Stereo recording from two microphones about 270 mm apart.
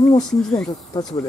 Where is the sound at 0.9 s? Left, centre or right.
Centre.